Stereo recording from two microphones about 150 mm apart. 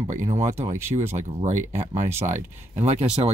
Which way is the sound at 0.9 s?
35° right (ahead or behind).